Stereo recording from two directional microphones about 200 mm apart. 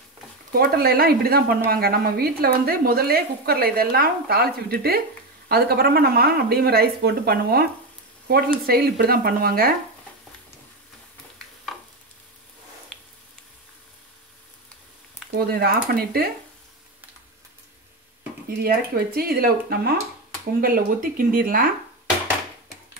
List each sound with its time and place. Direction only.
0.5 s speech: 45° right (ahead or behind)
8.6 s speech: 50° right (ahead or behind)
11.7 s stir: centre (ahead or behind)
15.3 s speech: 50° right (ahead or behind)
18.6 s speech: 50° right (ahead or behind)